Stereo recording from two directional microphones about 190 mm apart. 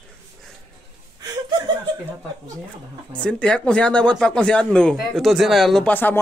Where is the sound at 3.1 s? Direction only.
5° left (ahead or behind).